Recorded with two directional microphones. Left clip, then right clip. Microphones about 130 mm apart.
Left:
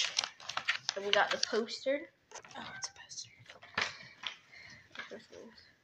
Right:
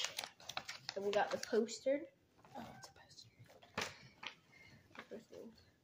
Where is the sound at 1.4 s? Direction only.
20° right (ahead or behind).